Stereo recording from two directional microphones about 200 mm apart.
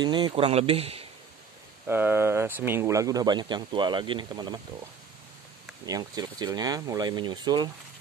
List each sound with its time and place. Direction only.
0.0 s speech: 20° right (ahead or behind)
1.9 s speech: 10° right (ahead or behind)
5.9 s speech: 20° right (ahead or behind)